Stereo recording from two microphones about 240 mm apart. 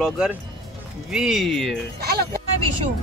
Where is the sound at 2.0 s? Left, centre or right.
Right.